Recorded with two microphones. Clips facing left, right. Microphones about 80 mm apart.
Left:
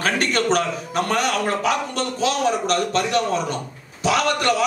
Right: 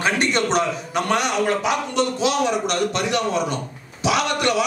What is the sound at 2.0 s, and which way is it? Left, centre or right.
A man's voice, left.